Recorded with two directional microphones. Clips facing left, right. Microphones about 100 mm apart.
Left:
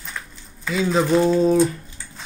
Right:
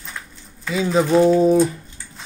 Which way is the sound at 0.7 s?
10° right (ahead or behind).